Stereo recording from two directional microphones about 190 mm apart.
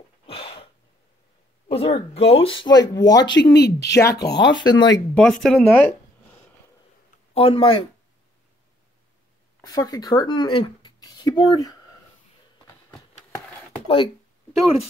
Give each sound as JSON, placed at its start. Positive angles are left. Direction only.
{"t": 0.3, "sound": "a sound", "side_deg": 30}
{"t": 1.7, "sound": "speech", "side_deg": 30}
{"t": 3.5, "sound": "speech", "side_deg": 60}
{"t": 4.0, "sound": "speech", "side_deg": 15}
{"t": 4.3, "sound": "speech", "side_deg": 70}
{"t": 4.6, "sound": "speech", "side_deg": 20}
{"t": 5.1, "sound": "speech", "side_deg": 5}
{"t": 7.3, "sound": "speech", "side_deg": 30}
{"t": 9.6, "sound": "speech", "side_deg": 20}
{"t": 13.8, "sound": "speech", "side_deg": 25}